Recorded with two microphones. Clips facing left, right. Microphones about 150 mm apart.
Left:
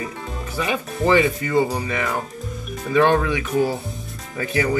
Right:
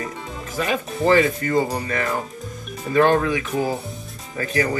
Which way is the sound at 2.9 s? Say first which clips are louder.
Even; 40° right (ahead or behind).